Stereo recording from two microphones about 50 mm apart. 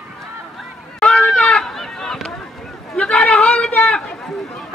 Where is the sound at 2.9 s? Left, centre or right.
Left.